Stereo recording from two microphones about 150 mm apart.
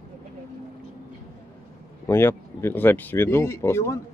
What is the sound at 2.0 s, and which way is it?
Speech, 15° left (ahead or behind).